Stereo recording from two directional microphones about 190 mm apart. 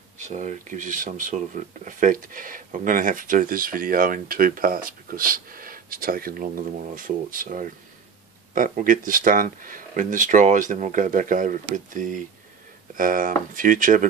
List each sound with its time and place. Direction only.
0.2 s speech: 40° right (ahead or behind)